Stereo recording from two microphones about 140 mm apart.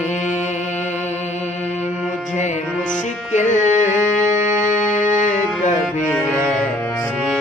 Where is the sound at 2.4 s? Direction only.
60° left (ahead or behind).